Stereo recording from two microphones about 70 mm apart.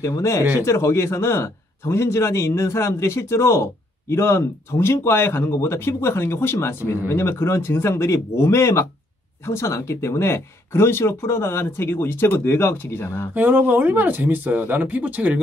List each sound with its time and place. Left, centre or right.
0.0 s speech: left
13.3 s speech: right